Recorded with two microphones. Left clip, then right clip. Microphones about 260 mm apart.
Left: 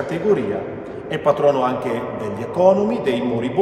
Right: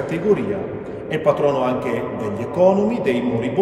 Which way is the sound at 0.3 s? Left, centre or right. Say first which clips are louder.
Even; centre.